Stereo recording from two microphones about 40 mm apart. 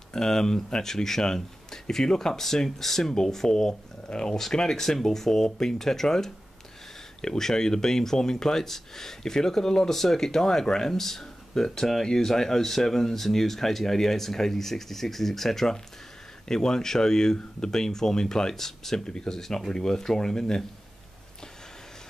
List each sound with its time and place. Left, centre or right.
0.1 s speech: centre